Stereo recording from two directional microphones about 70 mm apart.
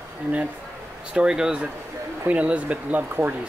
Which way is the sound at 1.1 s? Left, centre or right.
Centre.